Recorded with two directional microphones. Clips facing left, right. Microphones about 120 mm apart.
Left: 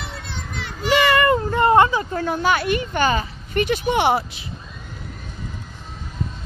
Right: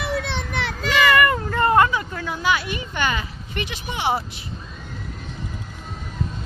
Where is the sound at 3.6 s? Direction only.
55° left (ahead or behind).